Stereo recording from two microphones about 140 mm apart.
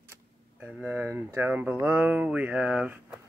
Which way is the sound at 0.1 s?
15° right (ahead or behind).